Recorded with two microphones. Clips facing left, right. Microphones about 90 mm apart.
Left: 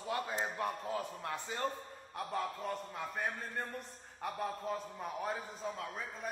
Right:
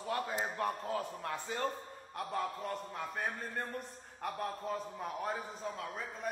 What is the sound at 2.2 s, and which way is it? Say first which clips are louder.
A man's voice: right 1 dB; centre (ahead or behind).